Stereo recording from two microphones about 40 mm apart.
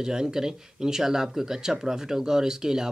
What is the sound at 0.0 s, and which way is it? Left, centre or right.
Speech, centre.